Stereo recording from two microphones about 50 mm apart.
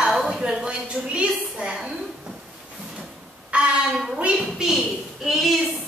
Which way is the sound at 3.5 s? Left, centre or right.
Right.